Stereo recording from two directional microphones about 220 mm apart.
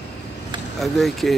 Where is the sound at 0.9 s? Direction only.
Centre (ahead or behind).